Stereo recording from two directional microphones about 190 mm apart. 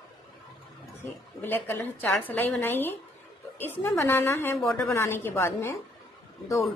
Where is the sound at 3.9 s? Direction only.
10° left (ahead or behind).